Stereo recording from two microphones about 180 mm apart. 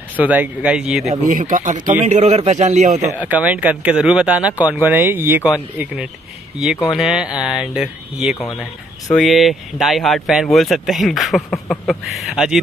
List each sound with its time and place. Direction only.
0.2 s speech: 10° right (ahead or behind)
1.2 s a man's voice: 45° right (ahead or behind)
3.0 s speech: 10° right (ahead or behind)